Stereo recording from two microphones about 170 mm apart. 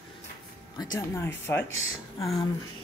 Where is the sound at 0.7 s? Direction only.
15° left (ahead or behind).